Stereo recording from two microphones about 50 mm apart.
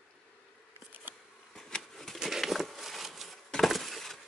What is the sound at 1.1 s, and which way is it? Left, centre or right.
Bee, right.